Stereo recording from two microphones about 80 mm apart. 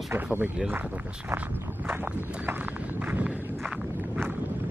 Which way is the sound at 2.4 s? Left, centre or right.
Right.